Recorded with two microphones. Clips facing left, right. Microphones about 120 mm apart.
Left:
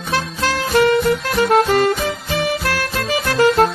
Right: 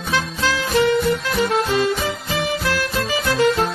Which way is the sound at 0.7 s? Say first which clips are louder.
Left 3 dB; centre (ahead or behind).